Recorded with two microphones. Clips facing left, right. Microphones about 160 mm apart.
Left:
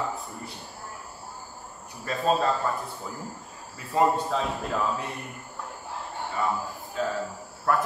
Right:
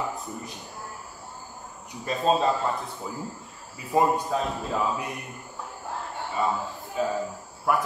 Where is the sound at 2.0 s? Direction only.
20° right (ahead or behind).